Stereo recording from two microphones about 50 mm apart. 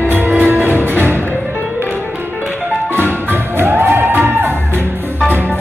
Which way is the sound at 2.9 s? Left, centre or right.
Right.